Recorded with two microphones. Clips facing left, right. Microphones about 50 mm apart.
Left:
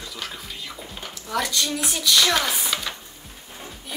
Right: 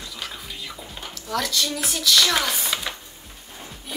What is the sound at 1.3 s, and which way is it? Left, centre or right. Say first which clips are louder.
A woman's voice: even; centre.